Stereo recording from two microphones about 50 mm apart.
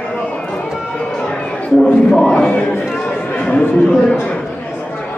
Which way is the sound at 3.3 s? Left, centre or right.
Left.